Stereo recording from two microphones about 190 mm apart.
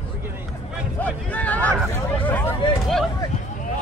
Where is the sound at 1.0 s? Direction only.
10° left (ahead or behind).